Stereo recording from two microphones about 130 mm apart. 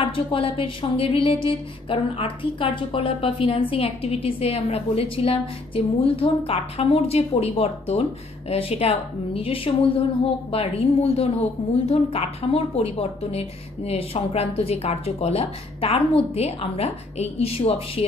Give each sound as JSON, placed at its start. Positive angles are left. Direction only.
{"t": 0.0, "sound": "speech", "side_deg": 45}